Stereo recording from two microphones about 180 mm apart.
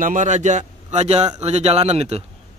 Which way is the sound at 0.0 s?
45° right (ahead or behind).